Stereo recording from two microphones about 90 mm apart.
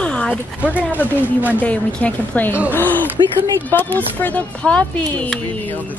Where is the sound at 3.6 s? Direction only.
20° left (ahead or behind).